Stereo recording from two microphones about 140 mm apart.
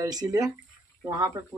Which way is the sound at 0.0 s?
25° right (ahead or behind).